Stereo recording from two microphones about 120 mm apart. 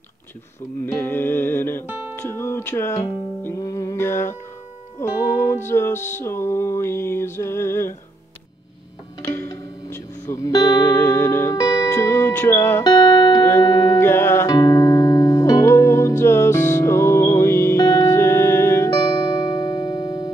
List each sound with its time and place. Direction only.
0.9 s music: 15° left (ahead or behind)
1.9 s music: 15° right (ahead or behind)
2.1 s music: 20° left (ahead or behind)
9.3 s music: 25° left (ahead or behind)
11.5 s music: 35° left (ahead or behind)
11.9 s music: 25° left (ahead or behind)
12.8 s music: 40° left (ahead or behind)
13.4 s music: 25° left (ahead or behind)
13.7 s music: 35° left (ahead or behind)
14.0 s music: 20° left (ahead or behind)
18.9 s music: 35° left (ahead or behind)